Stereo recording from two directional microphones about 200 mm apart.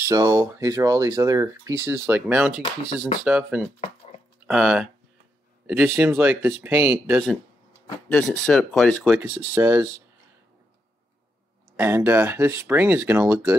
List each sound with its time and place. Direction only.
0.0 s speech: 15° right (ahead or behind)
8.1 s speech: 5° left (ahead or behind)
9.2 s speech: 10° right (ahead or behind)
11.7 s speech: 10° right (ahead or behind)